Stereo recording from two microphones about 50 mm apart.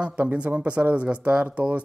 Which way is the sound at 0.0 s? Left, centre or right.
Right.